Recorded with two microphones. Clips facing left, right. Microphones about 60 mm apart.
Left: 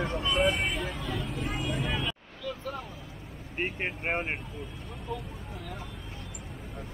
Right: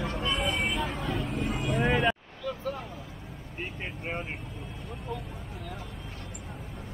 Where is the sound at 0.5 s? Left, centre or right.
Right.